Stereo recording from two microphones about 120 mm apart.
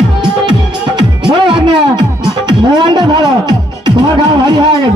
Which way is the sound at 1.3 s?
40° right (ahead or behind).